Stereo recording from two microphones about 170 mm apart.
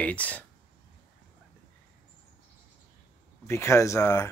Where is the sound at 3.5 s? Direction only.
15° left (ahead or behind).